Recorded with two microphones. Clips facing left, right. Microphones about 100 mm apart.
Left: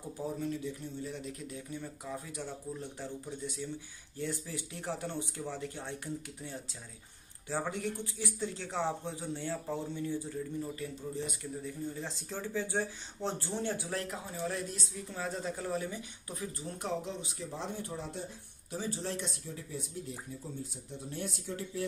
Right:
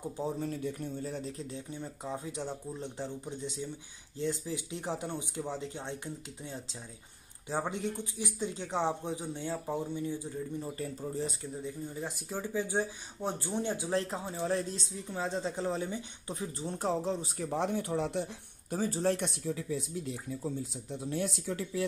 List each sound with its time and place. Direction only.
0.5 s speech: 45° right (ahead or behind)
1.1 s speech: 30° right (ahead or behind)
10.8 s speech: 40° right (ahead or behind)
11.6 s speech: 15° right (ahead or behind); by 17.5 s 35° right (ahead or behind)
17.5 s speech: 65° right (ahead or behind)
18.7 s speech: 45° right (ahead or behind)
19.1 s speech: 70° right (ahead or behind); by 19.9 s 90° right